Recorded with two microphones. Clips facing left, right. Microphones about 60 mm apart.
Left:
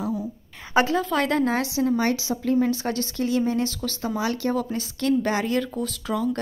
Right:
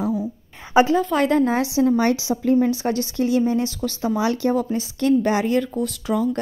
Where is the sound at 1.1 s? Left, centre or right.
Centre.